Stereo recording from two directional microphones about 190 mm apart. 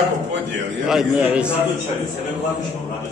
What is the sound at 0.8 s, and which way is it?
Speech, 5° right (ahead or behind).